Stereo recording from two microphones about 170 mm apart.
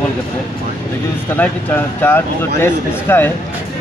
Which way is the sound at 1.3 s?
10° left (ahead or behind).